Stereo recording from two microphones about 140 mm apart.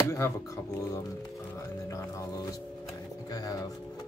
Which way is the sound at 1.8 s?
20° left (ahead or behind).